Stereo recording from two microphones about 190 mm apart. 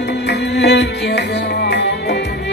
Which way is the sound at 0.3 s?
65° left (ahead or behind).